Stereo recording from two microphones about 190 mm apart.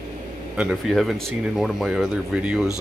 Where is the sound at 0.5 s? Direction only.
5° right (ahead or behind).